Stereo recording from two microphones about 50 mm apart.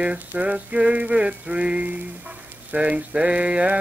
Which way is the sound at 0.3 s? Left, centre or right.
Right.